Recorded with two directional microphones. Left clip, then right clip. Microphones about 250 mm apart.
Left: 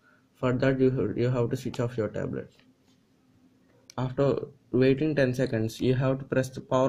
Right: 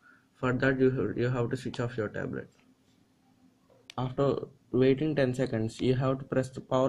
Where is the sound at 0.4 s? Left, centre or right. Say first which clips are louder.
Left 2 dB; centre.